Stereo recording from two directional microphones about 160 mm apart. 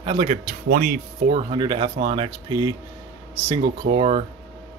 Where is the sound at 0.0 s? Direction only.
35° right (ahead or behind).